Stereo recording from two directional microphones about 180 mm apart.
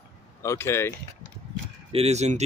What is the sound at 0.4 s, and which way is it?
Speech, 15° left (ahead or behind).